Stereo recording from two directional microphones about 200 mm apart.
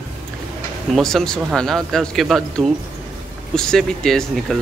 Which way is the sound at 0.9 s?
Centre (ahead or behind).